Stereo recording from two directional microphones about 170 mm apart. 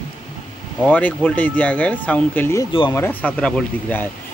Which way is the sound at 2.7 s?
30° left (ahead or behind).